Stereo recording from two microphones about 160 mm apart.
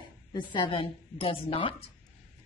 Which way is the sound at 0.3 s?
30° left (ahead or behind).